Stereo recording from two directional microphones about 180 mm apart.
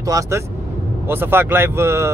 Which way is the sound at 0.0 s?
20° right (ahead or behind).